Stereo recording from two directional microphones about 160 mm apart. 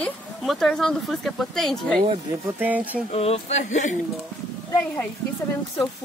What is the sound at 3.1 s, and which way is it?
Speech, 40° left (ahead or behind).